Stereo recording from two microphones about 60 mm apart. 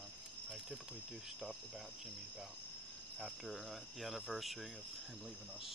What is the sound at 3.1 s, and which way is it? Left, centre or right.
Cricket, centre.